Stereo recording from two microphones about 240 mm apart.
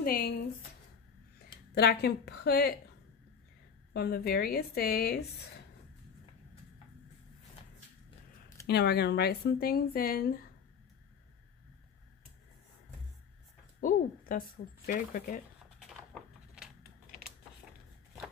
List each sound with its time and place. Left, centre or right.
0.0 s speech: left
1.8 s speech: left
3.9 s speech: left
8.6 s speech: left
13.7 s a woman's voice: left